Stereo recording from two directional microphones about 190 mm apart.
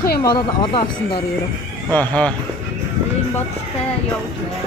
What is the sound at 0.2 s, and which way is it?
Speech, 25° left (ahead or behind).